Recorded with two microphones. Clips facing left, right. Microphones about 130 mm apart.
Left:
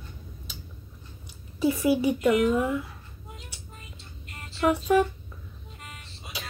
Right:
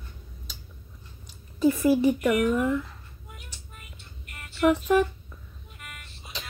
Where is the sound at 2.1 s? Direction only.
20° left (ahead or behind).